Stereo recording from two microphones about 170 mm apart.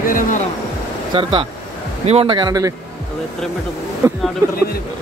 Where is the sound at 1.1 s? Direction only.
30° right (ahead or behind).